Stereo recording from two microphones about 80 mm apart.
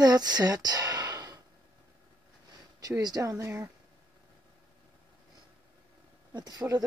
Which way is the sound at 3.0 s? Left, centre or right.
Right.